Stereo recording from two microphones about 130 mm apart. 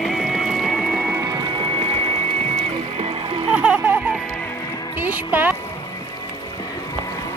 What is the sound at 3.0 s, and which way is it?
Music, 40° right (ahead or behind).